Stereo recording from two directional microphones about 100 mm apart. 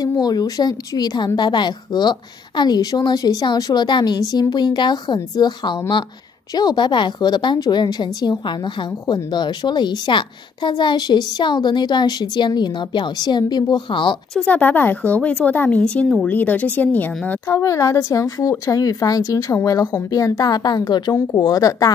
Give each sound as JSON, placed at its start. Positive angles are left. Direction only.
{"t": 0.0, "sound": "a woman's voice", "side_deg": 40}
{"t": 14.3, "sound": "speech", "side_deg": 15}
{"t": 17.5, "sound": "speech", "side_deg": 30}